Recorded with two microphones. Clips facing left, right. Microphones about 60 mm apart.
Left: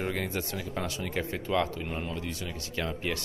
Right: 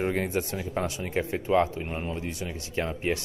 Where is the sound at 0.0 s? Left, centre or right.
Right.